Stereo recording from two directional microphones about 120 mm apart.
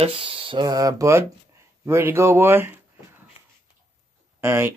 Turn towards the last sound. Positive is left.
turn(degrees=-20)  # may be behind; listen again after turning